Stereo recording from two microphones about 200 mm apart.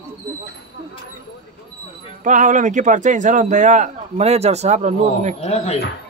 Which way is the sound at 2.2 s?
40° right (ahead or behind).